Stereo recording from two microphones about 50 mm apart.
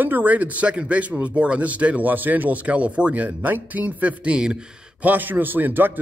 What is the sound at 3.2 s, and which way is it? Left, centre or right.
Speech, right.